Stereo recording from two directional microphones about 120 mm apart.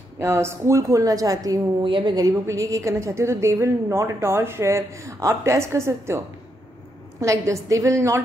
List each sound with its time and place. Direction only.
0.2 s a woman's voice: 25° right (ahead or behind)